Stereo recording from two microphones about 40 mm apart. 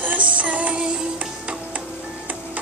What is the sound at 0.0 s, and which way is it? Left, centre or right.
Music, right.